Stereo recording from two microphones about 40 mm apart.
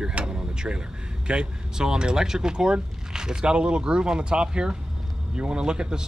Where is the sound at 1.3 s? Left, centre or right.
Right.